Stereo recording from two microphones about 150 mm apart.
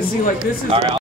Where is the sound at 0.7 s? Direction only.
35° right (ahead or behind).